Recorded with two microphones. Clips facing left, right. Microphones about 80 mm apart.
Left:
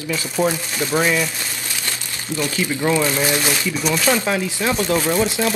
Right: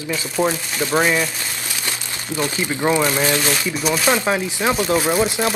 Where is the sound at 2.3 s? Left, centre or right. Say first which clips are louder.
Even; right.